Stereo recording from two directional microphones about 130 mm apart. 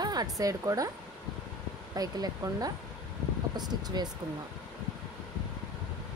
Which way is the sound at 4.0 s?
30° right (ahead or behind).